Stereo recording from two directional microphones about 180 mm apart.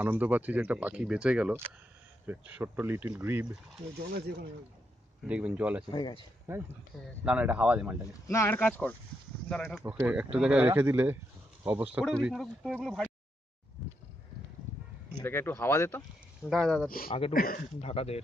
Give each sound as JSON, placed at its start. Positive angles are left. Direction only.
{"t": 0.0, "sound": "speech", "side_deg": -10}
{"t": 4.1, "sound": "speech", "side_deg": -60}
{"t": 5.2, "sound": "speech", "side_deg": -5}
{"t": 5.9, "sound": "speech", "side_deg": 25}
{"t": 7.2, "sound": "speech", "side_deg": -10}
{"t": 8.3, "sound": "speech", "side_deg": 15}
{"t": 9.8, "sound": "speech", "side_deg": -10}
{"t": 15.2, "sound": "speech", "side_deg": 10}
{"t": 16.4, "sound": "speech", "side_deg": 0}
{"t": 17.3, "sound": "speech", "side_deg": 55}
{"t": 17.7, "sound": "speech", "side_deg": 35}